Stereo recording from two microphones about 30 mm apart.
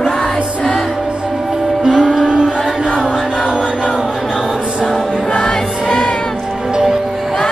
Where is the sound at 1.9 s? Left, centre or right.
Centre.